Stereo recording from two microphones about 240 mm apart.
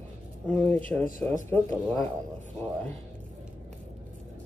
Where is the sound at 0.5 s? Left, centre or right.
Centre.